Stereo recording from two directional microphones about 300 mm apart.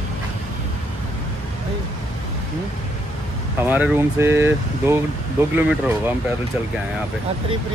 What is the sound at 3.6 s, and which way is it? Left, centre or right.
Speech, centre.